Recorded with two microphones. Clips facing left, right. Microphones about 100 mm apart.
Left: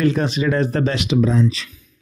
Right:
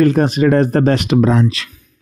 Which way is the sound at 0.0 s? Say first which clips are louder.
Right 6 dB; 50° right (ahead or behind).